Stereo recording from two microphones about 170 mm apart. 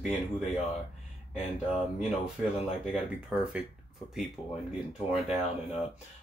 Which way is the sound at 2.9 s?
5° right (ahead or behind).